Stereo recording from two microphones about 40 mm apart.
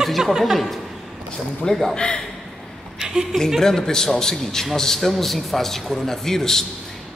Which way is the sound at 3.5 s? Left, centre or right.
Centre.